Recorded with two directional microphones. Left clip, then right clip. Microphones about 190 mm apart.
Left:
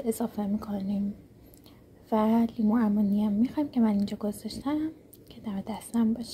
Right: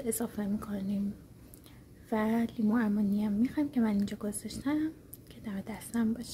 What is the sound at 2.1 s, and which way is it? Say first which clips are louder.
A woman's voice: left 6 dB; 5° right (ahead or behind).